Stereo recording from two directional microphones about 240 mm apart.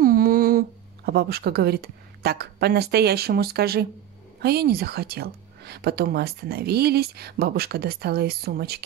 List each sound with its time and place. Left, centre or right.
0.0 s speech: right